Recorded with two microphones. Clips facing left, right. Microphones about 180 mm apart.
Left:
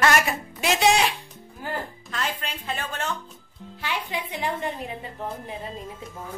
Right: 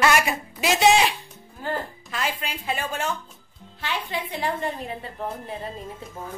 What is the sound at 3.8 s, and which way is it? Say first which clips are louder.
A woman's voice: right 1 dB; 15° left (ahead or behind).